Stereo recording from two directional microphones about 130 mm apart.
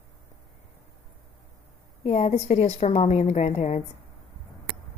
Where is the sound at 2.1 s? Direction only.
55° left (ahead or behind).